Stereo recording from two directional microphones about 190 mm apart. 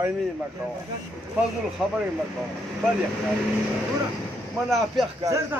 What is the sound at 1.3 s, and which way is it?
Speech, 10° right (ahead or behind).